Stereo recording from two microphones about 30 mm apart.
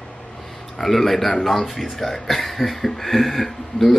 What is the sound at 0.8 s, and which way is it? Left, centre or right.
Speech, centre.